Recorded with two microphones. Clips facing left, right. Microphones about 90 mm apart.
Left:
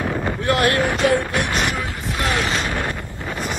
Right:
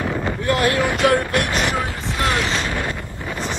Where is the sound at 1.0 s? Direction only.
60° right (ahead or behind).